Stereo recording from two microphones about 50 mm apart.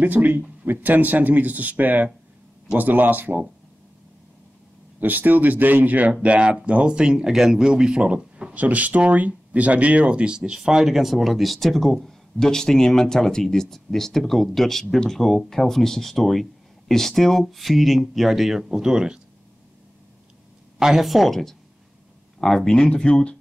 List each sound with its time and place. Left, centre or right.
0.0 s speech: right
5.0 s speech: right; by 8.5 s centre
8.5 s speech: right; by 19.1 s centre
20.8 s speech: centre
22.7 s speech: centre